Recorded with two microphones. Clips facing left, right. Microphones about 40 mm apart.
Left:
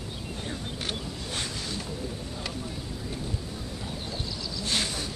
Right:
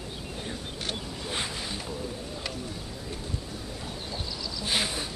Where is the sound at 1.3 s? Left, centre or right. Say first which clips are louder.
Right 2 dB; centre.